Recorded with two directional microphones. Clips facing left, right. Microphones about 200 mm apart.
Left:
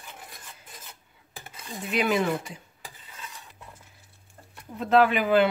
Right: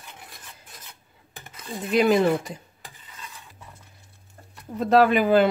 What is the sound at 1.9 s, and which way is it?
Speech, 40° right (ahead or behind).